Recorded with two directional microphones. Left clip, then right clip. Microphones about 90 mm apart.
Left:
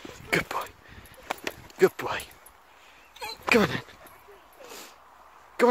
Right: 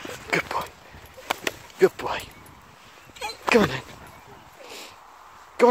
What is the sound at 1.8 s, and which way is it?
Speech, 30° left (ahead or behind).